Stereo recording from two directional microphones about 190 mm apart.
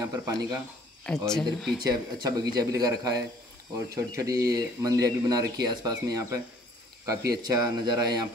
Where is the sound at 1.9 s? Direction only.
20° right (ahead or behind).